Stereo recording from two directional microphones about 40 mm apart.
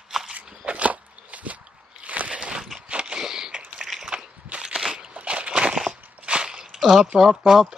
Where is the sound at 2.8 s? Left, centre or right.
Right.